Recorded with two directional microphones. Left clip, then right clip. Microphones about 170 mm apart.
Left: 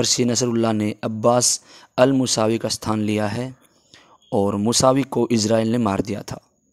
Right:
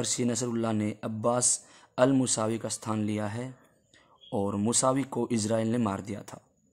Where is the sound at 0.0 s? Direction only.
35° left (ahead or behind).